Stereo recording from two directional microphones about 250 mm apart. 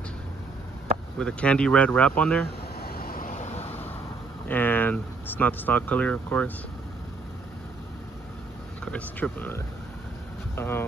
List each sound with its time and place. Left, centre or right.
1.1 s speech: centre
2.8 s vehicle: left
4.5 s speech: centre
8.8 s speech: centre